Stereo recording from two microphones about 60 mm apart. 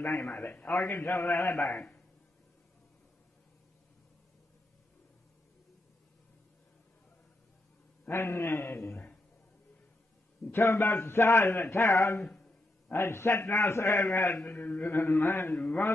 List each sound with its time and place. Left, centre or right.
0.0 s a man's voice: left
0.7 s a man's voice: left
1.7 s a man's voice: centre
8.1 s a man's voice: left
10.5 s a man's voice: left
12.3 s a sound: centre
12.9 s a man's voice: left
15.5 s a man's voice: left